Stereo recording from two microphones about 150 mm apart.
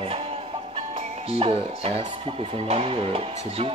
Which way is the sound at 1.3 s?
40° right (ahead or behind).